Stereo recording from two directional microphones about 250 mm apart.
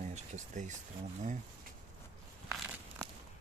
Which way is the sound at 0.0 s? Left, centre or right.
Right.